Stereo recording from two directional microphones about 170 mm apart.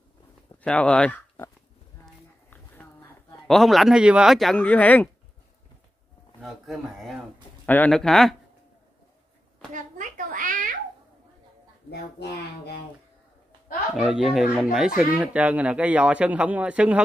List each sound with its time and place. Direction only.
0.7 s speech: 5° left (ahead or behind)
2.5 s speech: 10° left (ahead or behind)
6.4 s speech: centre (ahead or behind)
9.8 s a sound: 50° right (ahead or behind)
13.9 s speech: centre (ahead or behind)